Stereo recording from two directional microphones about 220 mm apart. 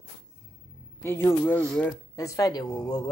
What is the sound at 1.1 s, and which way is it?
A man's voice, 10° left (ahead or behind).